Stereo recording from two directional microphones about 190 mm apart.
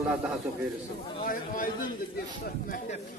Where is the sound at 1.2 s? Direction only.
45° left (ahead or behind).